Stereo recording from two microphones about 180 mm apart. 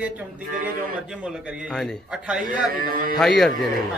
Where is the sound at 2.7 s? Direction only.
50° right (ahead or behind).